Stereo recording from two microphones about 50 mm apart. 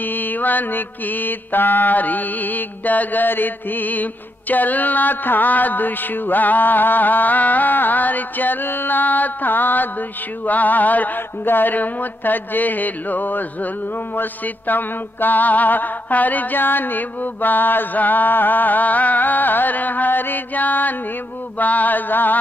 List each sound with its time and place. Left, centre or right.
0.0 s mantra: left